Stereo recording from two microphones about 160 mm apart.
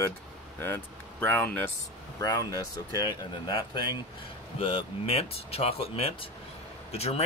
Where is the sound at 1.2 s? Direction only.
10° left (ahead or behind).